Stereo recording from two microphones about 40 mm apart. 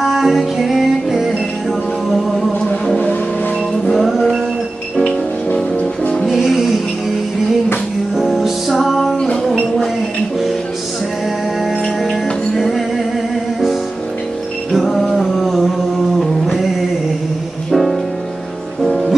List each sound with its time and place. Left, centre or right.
0.0 s music: centre
3.9 s music: centre
6.2 s music: centre
8.2 s music: centre
9.1 s music: centre
12.0 s music: centre
14.7 s mantra: centre
16.2 s a sound: centre
17.6 s music: centre